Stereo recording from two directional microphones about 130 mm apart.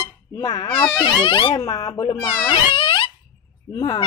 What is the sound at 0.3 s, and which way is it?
Speech, 25° left (ahead or behind).